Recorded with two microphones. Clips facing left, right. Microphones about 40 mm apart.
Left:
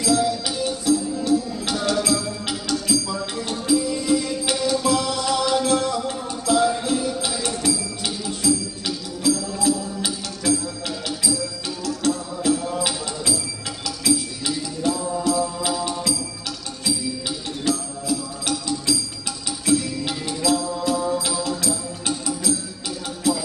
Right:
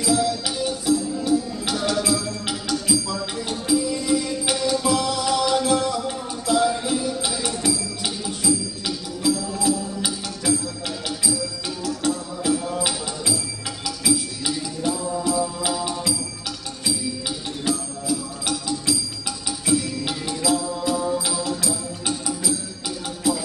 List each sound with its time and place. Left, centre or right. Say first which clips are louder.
0.0 s music: left 1 dB; centre
17.7 s music: left 1 dB; centre
19.6 s music: left 2 dB; centre